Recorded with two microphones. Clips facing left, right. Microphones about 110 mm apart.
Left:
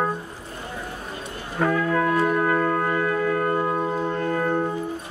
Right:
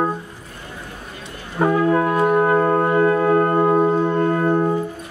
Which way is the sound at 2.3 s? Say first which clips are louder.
Right 5 dB; 30° right (ahead or behind).